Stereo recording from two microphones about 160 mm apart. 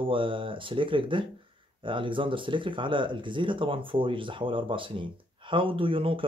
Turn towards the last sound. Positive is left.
turn(degrees=-35)  # may be behind; listen again after turning